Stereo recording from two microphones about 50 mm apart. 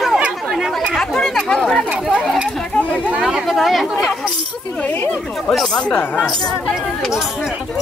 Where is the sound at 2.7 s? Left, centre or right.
Left.